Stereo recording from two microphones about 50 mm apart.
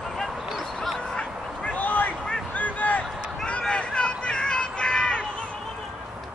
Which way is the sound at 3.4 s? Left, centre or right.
Left.